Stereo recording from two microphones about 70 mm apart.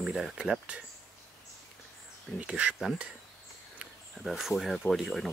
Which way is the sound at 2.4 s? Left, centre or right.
Centre.